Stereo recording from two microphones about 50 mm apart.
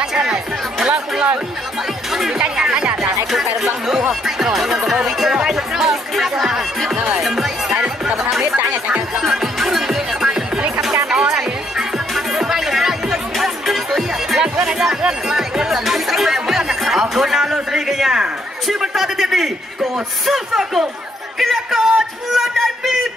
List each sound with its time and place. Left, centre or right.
0.0 s music: centre
2.5 s music: centre
7.7 s music: centre
8.5 s music: right
9.2 s music: centre
14.4 s speech: centre
21.4 s a sound: centre